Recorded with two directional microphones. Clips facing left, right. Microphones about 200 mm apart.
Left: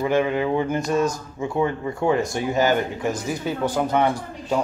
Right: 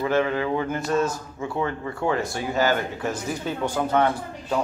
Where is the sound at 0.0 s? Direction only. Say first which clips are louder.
Left 2 dB; 15° left (ahead or behind).